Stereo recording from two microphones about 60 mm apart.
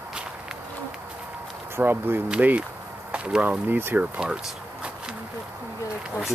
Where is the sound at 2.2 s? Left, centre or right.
Right.